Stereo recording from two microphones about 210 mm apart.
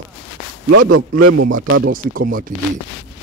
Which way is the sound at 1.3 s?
80° right.